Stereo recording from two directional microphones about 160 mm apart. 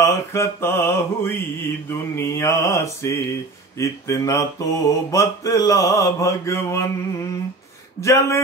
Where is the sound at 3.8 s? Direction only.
20° left (ahead or behind).